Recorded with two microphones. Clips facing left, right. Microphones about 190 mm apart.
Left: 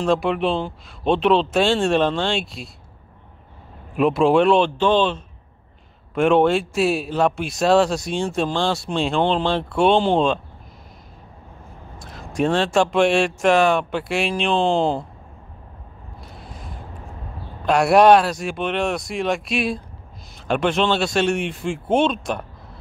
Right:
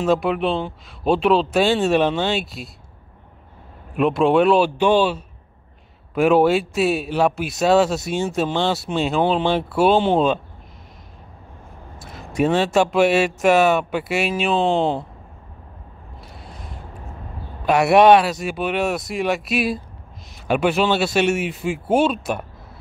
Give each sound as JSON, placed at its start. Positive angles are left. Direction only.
{"t": 0.0, "sound": "speech", "side_deg": -5}
{"t": 3.9, "sound": "speech", "side_deg": 0}
{"t": 12.0, "sound": "speech", "side_deg": -5}
{"t": 17.6, "sound": "speech", "side_deg": 0}